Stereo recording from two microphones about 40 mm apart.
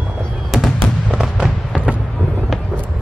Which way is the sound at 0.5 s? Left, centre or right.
Centre.